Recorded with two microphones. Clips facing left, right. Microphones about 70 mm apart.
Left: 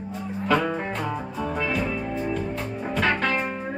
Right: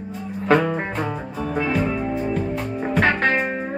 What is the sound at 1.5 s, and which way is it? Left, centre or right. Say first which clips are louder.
Music: right 5 dB; right.